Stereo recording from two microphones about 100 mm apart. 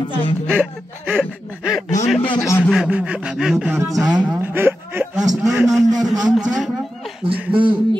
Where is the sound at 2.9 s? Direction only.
10° right (ahead or behind).